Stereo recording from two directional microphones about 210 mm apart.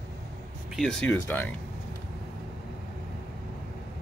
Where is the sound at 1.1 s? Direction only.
10° left (ahead or behind).